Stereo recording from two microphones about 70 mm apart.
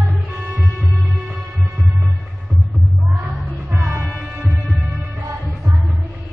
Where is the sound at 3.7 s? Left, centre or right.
Right.